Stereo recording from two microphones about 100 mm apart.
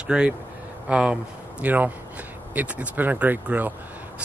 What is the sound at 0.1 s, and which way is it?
Speech, 10° right (ahead or behind).